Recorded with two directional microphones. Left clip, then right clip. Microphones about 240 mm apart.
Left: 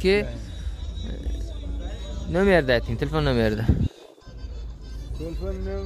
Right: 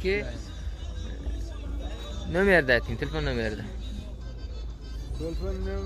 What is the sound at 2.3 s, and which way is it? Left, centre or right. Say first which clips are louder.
A man's voice: left 2 dB; centre.